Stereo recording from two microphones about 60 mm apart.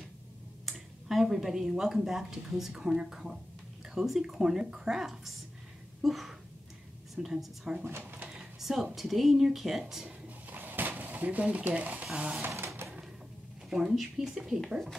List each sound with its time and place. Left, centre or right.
0.7 s a woman's voice: centre
7.8 s speech: right
8.4 s a sound: centre
8.9 s a woman's voice: centre
10.0 s a sound: right
12.0 s speech: centre
12.4 s bird: right
13.7 s a woman's voice: centre